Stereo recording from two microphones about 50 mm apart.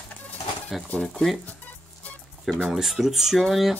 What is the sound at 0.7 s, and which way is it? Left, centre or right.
Speech, centre.